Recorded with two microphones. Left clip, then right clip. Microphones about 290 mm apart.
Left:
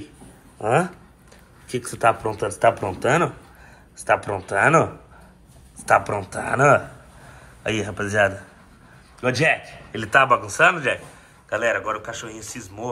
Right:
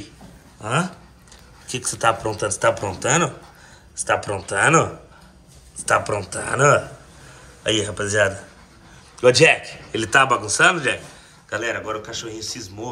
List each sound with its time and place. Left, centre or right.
1.7 s speech: centre
5.9 s speech: centre
9.2 s a man's voice: centre